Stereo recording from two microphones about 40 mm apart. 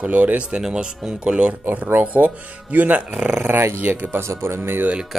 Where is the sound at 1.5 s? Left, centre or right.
Right.